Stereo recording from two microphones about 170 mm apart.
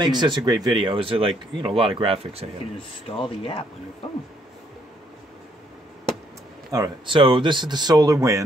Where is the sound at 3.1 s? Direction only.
35° left (ahead or behind).